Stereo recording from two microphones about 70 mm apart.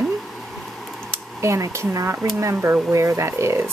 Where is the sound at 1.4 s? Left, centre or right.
Right.